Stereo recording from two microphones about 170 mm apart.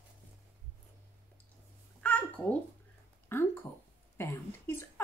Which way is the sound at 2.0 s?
10° left (ahead or behind).